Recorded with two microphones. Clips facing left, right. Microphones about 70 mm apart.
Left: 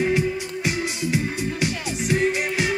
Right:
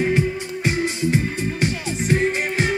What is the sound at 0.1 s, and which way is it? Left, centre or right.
Music, right.